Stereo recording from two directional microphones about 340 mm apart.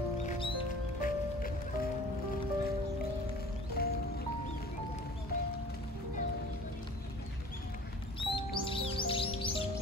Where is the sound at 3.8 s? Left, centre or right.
Left.